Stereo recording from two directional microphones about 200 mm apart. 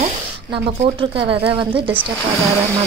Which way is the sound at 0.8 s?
25° right (ahead or behind).